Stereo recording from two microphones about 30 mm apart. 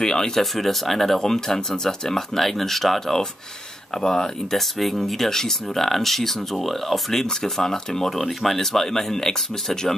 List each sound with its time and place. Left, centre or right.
0.0 s speech: centre
0.4 s speech: centre
4.7 s speech: centre